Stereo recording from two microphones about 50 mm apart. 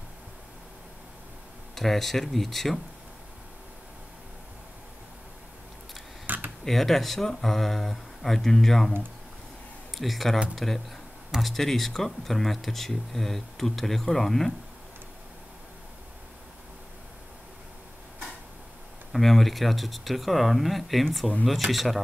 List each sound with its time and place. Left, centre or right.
1.8 s speech: centre
6.2 s a sound: right
6.6 s speech: centre
9.9 s speech: centre
19.1 s speech: centre